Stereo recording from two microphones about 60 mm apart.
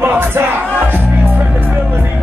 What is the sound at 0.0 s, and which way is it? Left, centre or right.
Music, right.